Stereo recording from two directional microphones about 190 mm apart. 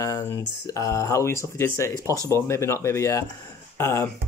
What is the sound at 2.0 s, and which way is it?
Speech, 15° right (ahead or behind).